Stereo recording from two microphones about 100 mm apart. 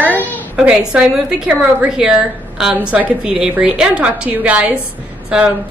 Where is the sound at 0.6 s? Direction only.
5° right (ahead or behind).